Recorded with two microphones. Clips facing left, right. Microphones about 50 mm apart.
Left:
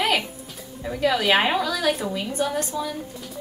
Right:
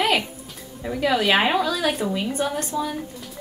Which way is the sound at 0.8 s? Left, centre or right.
Centre.